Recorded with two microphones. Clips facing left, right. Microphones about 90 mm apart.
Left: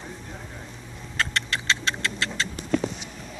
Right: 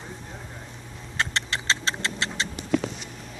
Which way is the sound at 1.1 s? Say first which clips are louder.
Left 1 dB; 25° right (ahead or behind).